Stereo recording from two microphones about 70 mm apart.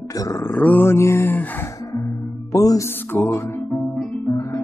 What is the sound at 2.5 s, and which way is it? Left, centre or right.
Music, left.